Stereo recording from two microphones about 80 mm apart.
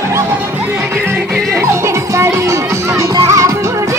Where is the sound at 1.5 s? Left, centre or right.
Right.